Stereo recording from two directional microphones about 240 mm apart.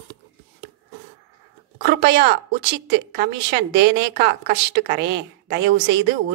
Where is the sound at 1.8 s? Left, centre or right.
Right.